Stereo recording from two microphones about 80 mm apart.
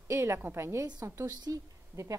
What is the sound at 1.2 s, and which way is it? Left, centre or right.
Speech, right.